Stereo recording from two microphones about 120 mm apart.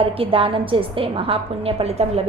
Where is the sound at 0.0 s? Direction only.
50° right (ahead or behind).